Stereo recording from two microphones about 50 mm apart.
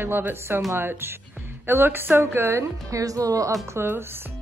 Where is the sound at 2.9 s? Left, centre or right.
Right.